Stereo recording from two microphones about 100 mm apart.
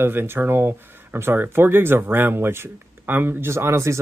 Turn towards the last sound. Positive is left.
turn(degrees=-30)  # may be behind; listen again after turning